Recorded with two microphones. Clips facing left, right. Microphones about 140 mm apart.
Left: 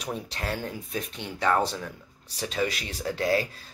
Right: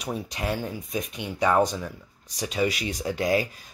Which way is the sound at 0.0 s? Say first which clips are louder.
Right 3 dB; 10° right (ahead or behind).